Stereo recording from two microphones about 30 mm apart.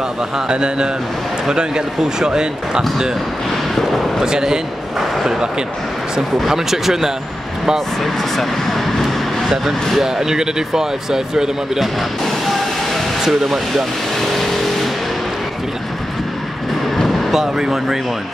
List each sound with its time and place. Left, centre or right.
0.5 s speech: right
2.1 s speech: right
4.2 s speech: centre
6.4 s speech: centre
8.0 s speech: centre
9.5 s speech: centre
12.3 s train: centre
13.2 s speech: centre
17.6 s speech: centre